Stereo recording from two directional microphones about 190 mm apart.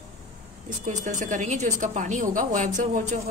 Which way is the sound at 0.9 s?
40° right (ahead or behind).